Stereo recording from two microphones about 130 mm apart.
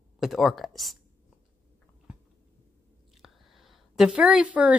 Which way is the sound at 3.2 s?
Centre (ahead or behind).